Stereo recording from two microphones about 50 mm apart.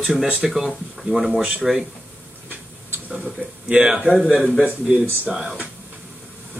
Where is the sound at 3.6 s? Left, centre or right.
Centre.